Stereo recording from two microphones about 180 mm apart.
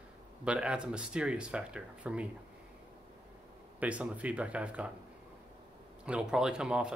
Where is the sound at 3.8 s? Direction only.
5° right (ahead or behind).